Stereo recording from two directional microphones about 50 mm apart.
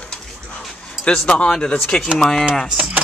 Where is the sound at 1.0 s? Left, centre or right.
Left.